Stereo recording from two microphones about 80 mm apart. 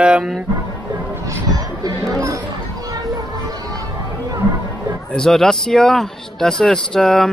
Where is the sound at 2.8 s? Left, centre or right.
Right.